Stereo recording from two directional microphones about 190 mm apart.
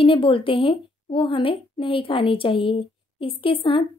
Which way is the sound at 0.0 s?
30° left (ahead or behind).